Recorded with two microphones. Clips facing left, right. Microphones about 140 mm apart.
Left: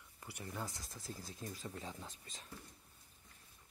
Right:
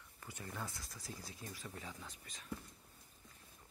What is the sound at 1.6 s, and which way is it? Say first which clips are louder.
Speech: left 3 dB; 25° left (ahead or behind).